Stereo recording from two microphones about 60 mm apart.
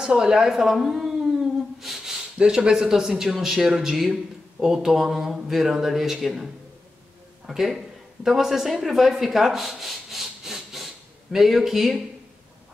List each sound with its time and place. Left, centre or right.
0.0 s speech: centre
1.8 s a sound: centre
2.3 s speech: centre